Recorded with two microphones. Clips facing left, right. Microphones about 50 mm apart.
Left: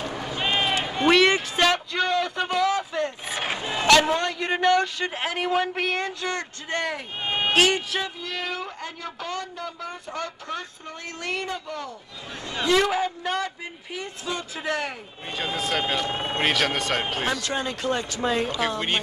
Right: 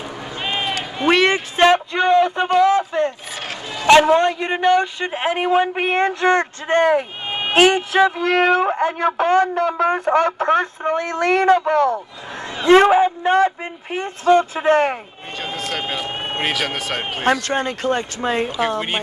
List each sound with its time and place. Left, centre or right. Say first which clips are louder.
0.5 s run: right 1 dB; centre
1.1 s a sound: right 3 dB; right
3.8 s a man's voice: right 7 dB; right
8.2 s speech: right 15 dB; right
9.6 s speech: right 16 dB; right
12.6 s speech: right 10 dB; right
16.1 s a man's voice: right 2 dB; right
16.3 s speech: right 1 dB; centre
17.2 s speech: right 8 dB; right